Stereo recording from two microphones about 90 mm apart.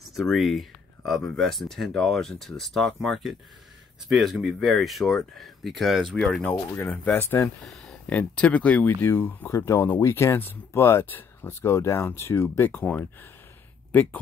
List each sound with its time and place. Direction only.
0.1 s speech: centre (ahead or behind)
6.1 s speech: 10° left (ahead or behind)
6.5 s speech: 25° left (ahead or behind)
7.4 s speech: 5° left (ahead or behind)